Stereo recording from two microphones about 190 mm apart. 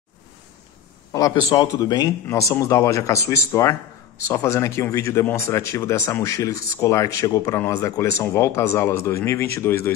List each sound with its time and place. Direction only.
1.1 s speech: 20° left (ahead or behind)